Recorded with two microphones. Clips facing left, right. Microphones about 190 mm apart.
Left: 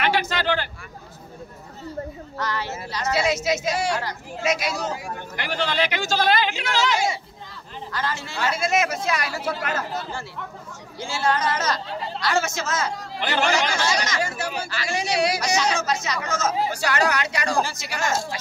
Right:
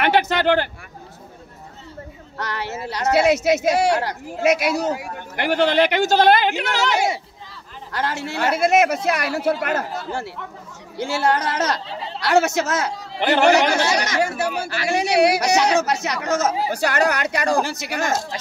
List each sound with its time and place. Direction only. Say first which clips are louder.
0.0 s speech: right 5 dB; 55° right (ahead or behind)
2.3 s a woman's voice: right 1 dB; 60° right (ahead or behind)
11.0 s a woman's voice: right 4 dB; 65° right (ahead or behind)